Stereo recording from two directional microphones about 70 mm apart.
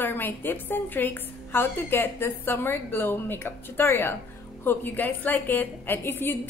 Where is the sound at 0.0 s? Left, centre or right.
Left.